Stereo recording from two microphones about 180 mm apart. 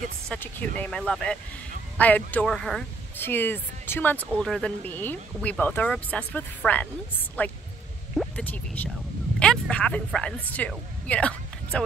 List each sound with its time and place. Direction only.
0.3 s speech: 10° left (ahead or behind)